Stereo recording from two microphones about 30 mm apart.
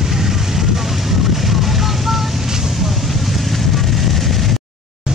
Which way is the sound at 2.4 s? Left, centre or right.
Centre.